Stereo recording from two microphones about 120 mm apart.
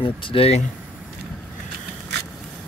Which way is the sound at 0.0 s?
45° left (ahead or behind).